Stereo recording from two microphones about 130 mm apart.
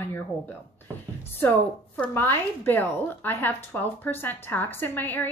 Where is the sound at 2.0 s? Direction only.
15° left (ahead or behind).